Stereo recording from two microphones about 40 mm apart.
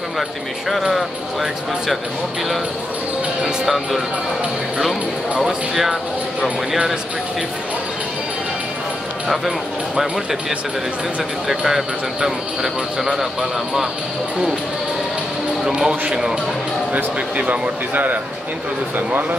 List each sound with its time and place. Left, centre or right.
0.9 s speech: centre
3.6 s speech: centre
5.4 s speech: centre
11.4 s speech: centre
15.6 s speech: centre
16.9 s speech: right